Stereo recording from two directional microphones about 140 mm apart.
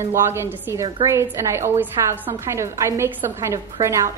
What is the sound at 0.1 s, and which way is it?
A woman's voice, 20° right (ahead or behind).